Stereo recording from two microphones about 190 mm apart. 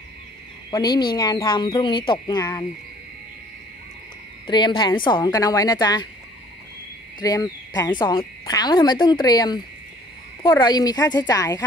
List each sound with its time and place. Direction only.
0.7 s speech: 20° left (ahead or behind)
4.5 s speech: 25° left (ahead or behind)
7.2 s speech: 20° left (ahead or behind)
10.6 s speech: 20° left (ahead or behind)